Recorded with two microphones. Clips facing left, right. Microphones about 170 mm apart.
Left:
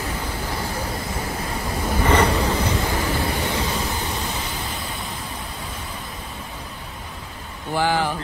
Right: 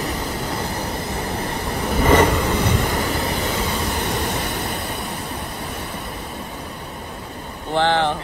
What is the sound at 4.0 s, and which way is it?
Vehicle, 70° right (ahead or behind).